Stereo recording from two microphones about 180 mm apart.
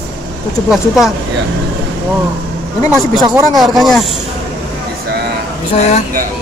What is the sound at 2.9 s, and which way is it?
Speech, 20° right (ahead or behind).